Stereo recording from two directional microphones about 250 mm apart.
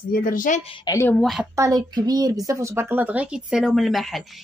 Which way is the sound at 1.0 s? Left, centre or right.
Centre.